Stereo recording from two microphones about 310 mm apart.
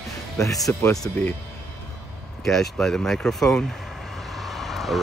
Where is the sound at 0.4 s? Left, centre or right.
Centre.